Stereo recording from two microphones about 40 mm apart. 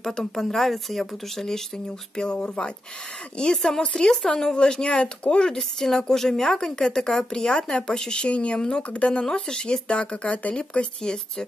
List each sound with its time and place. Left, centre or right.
0.0 s a woman's voice: centre
2.3 s speech: left
3.6 s a woman's voice: centre
5.6 s a woman's voice: centre; by 9.2 s left
9.2 s speech: centre; by 10.5 s left
10.5 s speech: left